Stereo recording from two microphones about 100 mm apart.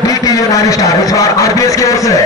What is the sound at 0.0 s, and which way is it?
A man's voice, 35° left (ahead or behind).